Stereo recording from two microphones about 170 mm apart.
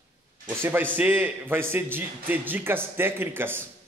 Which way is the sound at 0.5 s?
15° right (ahead or behind).